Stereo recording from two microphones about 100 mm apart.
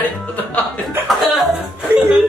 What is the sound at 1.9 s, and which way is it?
Music, 25° right (ahead or behind).